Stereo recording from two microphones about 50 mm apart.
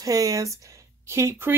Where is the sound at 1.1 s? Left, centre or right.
Right.